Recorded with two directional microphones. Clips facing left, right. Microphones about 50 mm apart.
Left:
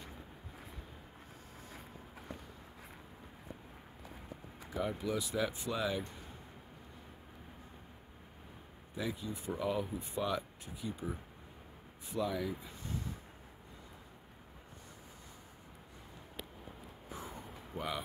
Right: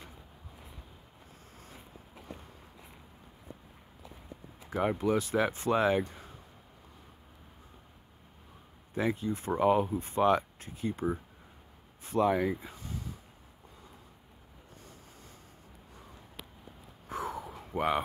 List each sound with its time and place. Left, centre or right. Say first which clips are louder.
4.8 s speech: right 9 dB; right
8.9 s speech: right 8 dB; right
12.1 s speech: right 9 dB; right
17.1 s a sound: right 10 dB; right